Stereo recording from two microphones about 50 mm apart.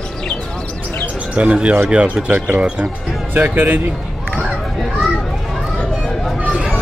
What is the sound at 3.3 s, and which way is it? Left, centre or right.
Speech, right.